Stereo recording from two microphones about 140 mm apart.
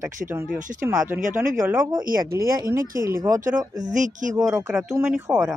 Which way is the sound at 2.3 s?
20° right (ahead or behind).